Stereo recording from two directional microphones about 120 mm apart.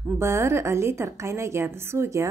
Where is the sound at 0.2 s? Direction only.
20° right (ahead or behind).